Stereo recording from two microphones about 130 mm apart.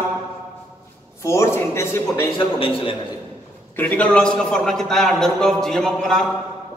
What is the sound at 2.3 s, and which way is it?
Speech, 45° left (ahead or behind).